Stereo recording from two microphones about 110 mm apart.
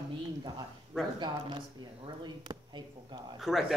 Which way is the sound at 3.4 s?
Centre (ahead or behind).